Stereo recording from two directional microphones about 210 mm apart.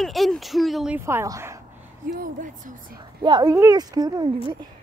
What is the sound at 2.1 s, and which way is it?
Speech, 40° right (ahead or behind).